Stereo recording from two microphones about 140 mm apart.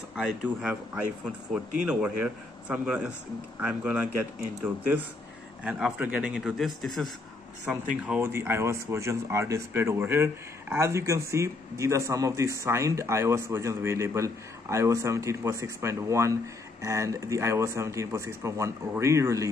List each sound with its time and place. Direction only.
0.1 s speech: 5° right (ahead or behind)
8.1 s speech: 15° right (ahead or behind)